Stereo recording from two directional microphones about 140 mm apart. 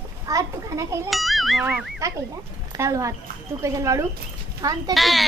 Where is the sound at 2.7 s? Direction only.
20° right (ahead or behind).